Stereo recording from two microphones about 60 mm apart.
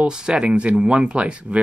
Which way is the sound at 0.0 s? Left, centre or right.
Centre.